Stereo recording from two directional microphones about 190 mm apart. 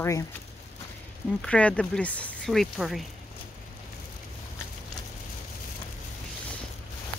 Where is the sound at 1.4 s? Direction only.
5° left (ahead or behind).